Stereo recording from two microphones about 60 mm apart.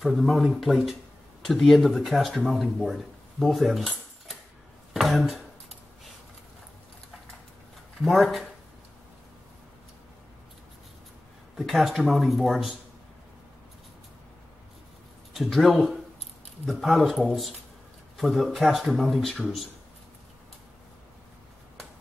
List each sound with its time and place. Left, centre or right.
0.0 s speech: centre
4.9 s speech: centre
8.0 s speech: centre
11.5 s speech: centre
15.3 s speech: centre